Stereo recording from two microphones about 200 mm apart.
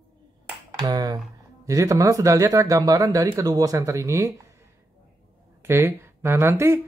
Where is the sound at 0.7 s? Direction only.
20° right (ahead or behind).